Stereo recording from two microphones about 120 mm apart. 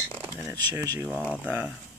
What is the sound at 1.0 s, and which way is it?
Speech, 15° left (ahead or behind).